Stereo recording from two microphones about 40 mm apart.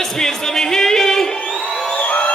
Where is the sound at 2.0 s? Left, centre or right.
Left.